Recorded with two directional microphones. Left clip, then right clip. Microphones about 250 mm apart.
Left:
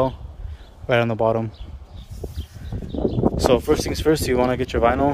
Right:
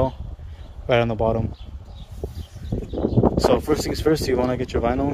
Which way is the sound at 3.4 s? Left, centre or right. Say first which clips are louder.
Left 1 dB; centre.